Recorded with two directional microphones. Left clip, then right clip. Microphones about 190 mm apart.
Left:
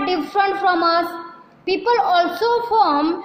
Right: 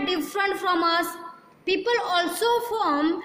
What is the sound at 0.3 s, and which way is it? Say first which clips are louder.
A woman's voice: left 8 dB; 10° right (ahead or behind).